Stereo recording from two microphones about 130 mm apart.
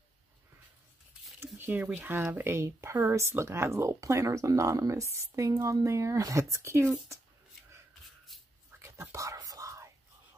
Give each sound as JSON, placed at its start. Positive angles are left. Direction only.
{"t": 1.4, "sound": "speech", "side_deg": -15}
{"t": 8.8, "sound": "whispering", "side_deg": -20}